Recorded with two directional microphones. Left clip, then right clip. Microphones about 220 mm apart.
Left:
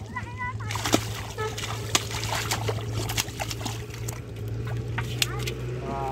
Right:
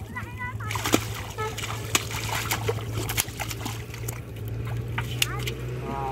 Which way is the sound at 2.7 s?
10° left (ahead or behind).